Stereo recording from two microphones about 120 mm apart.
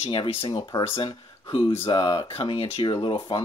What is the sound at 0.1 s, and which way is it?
Speech, 50° left (ahead or behind).